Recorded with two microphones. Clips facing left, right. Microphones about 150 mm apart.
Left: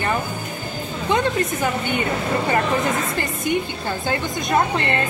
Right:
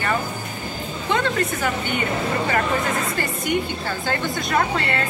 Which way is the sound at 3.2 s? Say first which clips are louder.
Left 1 dB; 20° left (ahead or behind).